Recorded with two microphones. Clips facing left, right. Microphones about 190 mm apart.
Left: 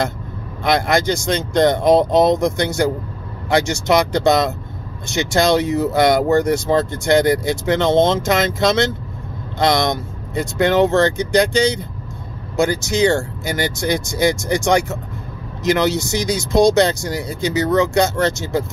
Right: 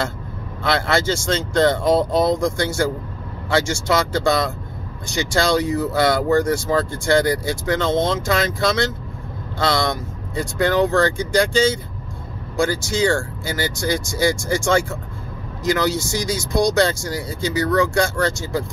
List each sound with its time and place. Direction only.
0.7 s speech: 15° left (ahead or behind)